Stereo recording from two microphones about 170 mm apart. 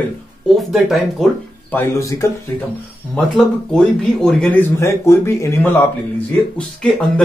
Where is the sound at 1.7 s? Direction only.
15° left (ahead or behind).